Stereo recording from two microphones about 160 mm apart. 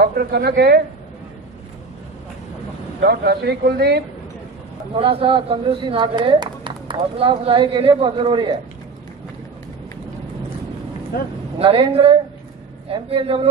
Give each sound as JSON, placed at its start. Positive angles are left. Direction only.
{"t": 0.0, "sound": "a woman's voice", "side_deg": -75}
{"t": 3.0, "sound": "speech", "side_deg": -90}
{"t": 4.9, "sound": "a woman's voice", "side_deg": -35}
{"t": 11.6, "sound": "a woman's voice", "side_deg": -35}